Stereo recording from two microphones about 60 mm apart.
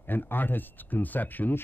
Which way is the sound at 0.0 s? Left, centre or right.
Left.